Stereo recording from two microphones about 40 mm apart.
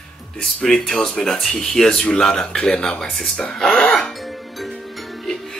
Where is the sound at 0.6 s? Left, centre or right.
Centre.